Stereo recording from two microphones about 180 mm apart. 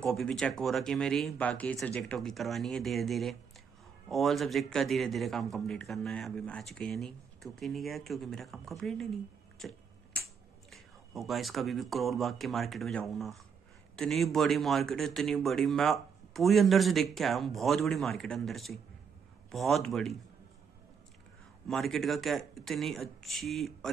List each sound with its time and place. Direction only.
0.0 s a man's voice: 5° left (ahead or behind)
9.6 s tick-tock: 5° left (ahead or behind)
10.7 s a man's voice: centre (ahead or behind)
21.6 s a man's voice: centre (ahead or behind)